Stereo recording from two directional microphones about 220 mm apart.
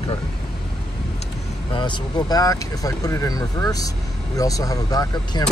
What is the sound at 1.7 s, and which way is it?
Speech, 20° left (ahead or behind).